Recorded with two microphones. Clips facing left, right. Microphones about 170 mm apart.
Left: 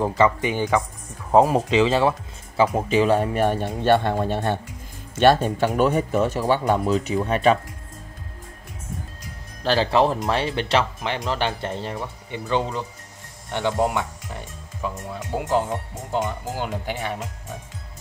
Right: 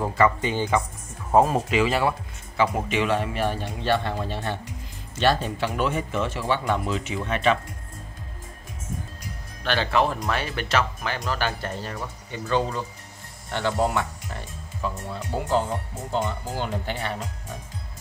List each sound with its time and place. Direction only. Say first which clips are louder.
0.0 s speech: left 2 dB; 20° left (ahead or behind); by 7.5 s 40° left (ahead or behind)
9.6 s speech: left 4 dB; 35° left (ahead or behind); by 17.3 s 10° left (ahead or behind)